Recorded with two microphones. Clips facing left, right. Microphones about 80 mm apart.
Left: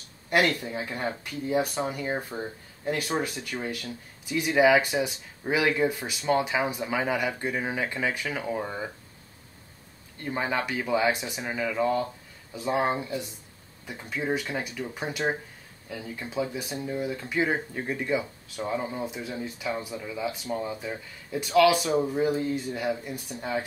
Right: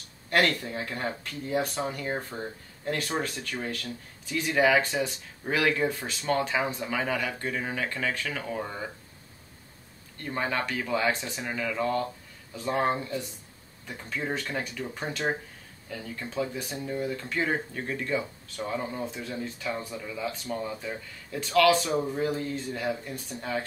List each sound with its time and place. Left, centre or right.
0.3 s speech: centre
10.2 s speech: centre